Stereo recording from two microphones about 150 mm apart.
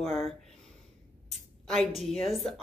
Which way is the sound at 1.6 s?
Centre (ahead or behind).